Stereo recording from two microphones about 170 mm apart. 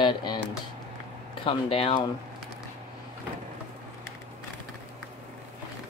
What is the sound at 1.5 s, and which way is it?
Speech, 35° left (ahead or behind).